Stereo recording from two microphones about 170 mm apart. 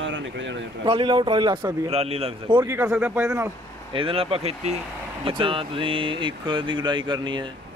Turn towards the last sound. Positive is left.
turn(degrees=-25)  # may be behind; listen again after turning